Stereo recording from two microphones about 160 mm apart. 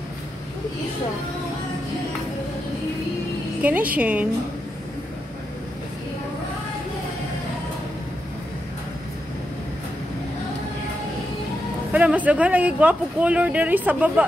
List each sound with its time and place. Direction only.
3.6 s speech: 10° right (ahead or behind)
11.9 s speech: 10° right (ahead or behind)